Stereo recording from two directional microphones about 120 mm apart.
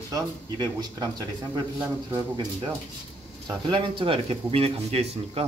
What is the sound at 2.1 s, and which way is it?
Speech, 35° right (ahead or behind).